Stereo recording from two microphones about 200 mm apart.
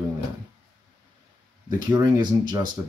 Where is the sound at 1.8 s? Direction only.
20° right (ahead or behind).